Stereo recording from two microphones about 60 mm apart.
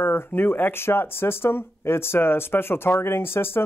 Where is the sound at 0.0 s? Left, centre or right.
Left.